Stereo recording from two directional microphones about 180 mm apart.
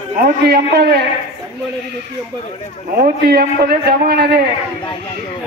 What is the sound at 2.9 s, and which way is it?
A man's voice, 55° right (ahead or behind).